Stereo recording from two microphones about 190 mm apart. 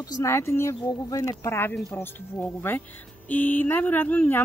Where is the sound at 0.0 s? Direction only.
15° left (ahead or behind).